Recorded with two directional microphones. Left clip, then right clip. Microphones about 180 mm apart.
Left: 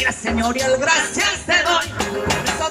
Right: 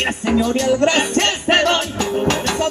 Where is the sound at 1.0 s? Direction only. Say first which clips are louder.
Right 2 dB; 15° right (ahead or behind).